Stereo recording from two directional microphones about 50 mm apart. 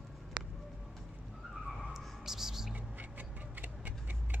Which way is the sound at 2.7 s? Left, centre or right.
Right.